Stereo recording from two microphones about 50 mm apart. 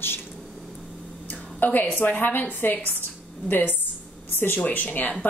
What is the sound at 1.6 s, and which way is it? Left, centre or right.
A woman's voice, left.